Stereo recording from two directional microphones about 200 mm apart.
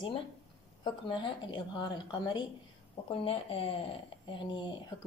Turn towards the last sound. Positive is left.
turn(degrees=20)  # may be behind; listen again after turning